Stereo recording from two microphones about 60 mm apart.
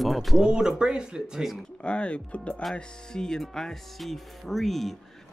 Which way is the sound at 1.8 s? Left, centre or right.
Centre.